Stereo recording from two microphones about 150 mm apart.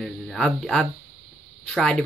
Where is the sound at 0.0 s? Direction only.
5° left (ahead or behind).